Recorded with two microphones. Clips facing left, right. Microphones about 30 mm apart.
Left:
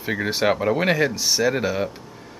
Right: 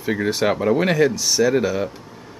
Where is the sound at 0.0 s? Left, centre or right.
Centre.